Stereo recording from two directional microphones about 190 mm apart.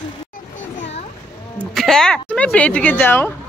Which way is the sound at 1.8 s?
Centre (ahead or behind).